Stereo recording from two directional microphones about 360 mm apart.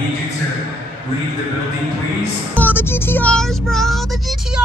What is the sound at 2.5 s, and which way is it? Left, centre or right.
Child singing, centre.